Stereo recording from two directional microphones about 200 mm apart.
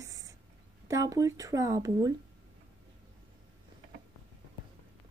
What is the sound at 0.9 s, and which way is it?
Speech, 15° right (ahead or behind).